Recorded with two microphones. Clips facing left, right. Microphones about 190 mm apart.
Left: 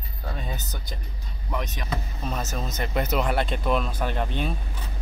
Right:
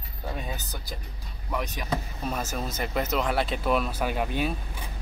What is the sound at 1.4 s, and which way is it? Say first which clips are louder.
Speech: right 1 dB; 5° right (ahead or behind).